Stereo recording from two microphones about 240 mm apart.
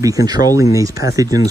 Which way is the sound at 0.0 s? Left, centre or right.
Centre.